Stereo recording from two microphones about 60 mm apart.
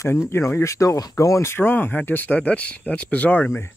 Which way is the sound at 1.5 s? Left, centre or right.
Left.